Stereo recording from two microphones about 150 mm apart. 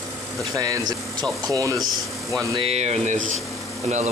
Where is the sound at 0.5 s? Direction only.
25° right (ahead or behind).